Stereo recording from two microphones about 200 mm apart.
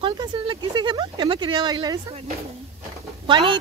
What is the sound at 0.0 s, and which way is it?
Speech, 25° right (ahead or behind).